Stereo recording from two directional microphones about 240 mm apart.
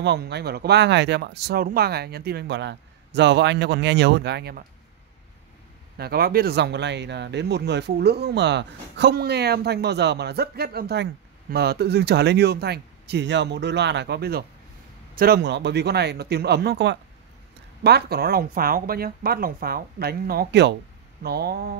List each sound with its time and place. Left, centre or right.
0.0 s speech: right
5.9 s speech: right